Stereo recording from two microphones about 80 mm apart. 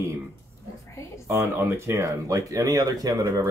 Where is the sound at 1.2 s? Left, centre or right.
Right.